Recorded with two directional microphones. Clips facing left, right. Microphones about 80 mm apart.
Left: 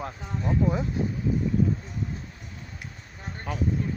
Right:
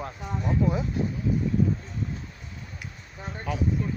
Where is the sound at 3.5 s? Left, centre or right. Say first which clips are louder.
Right 2 dB; left.